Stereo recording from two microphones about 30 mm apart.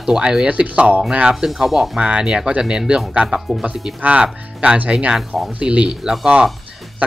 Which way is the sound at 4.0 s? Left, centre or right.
Right.